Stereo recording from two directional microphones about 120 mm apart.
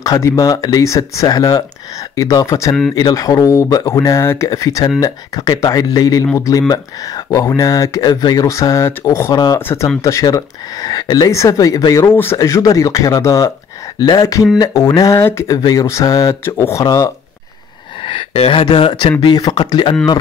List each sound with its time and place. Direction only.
0.0 s speech: 30° left (ahead or behind)
2.9 s speech: 35° left (ahead or behind); by 9.8 s 20° left (ahead or behind)
10.0 s speech: 30° left (ahead or behind)
18.0 s speech: 50° left (ahead or behind)